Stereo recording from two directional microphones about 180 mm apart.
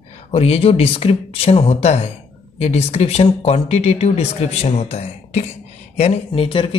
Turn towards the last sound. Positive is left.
turn(degrees=30)  # may be behind; listen again after turning